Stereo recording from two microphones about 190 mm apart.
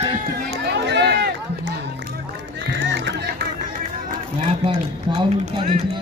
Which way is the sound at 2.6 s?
65° right (ahead or behind).